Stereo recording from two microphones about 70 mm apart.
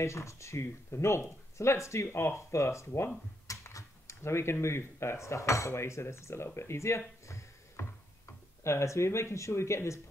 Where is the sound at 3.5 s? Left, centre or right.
Left.